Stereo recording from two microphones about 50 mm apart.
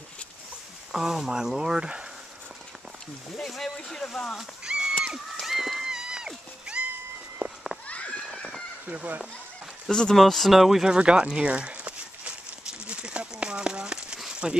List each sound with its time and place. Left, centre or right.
0.9 s speech: centre
3.3 s speech: centre
4.6 s a sound: centre
7.4 s run: right
7.9 s a sound: left
8.8 s speech: right
9.8 s speech: centre
10.1 s speech: centre
10.9 s a sound: right